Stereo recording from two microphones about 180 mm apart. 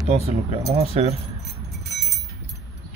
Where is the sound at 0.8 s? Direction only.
35° right (ahead or behind).